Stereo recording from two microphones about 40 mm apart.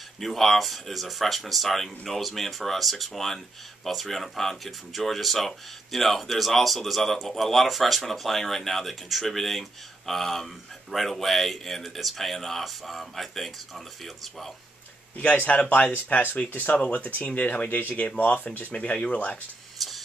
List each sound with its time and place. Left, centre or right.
0.2 s speech: centre
15.1 s speech: left
16.7 s speech: left
18.7 s speech: left
19.8 s a sound: centre